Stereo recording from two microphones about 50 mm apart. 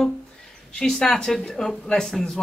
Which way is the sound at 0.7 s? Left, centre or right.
Centre.